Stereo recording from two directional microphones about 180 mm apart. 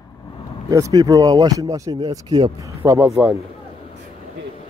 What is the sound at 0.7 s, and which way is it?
Speech, 20° right (ahead or behind).